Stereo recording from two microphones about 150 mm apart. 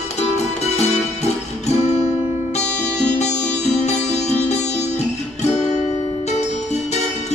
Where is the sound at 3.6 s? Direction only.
45° left (ahead or behind).